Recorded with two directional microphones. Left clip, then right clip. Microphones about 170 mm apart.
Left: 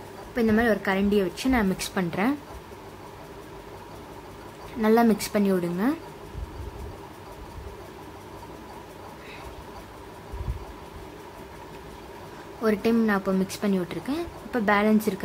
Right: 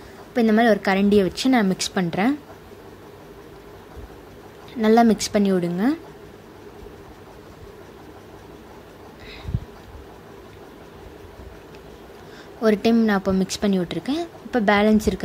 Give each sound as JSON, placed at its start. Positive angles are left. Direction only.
{"t": 0.3, "sound": "a woman's voice", "side_deg": -30}
{"t": 4.8, "sound": "a woman's voice", "side_deg": -25}
{"t": 12.6, "sound": "a woman's voice", "side_deg": -25}